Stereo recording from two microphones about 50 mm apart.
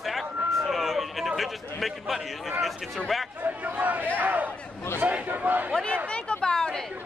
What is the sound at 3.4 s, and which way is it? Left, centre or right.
A man's voice, right.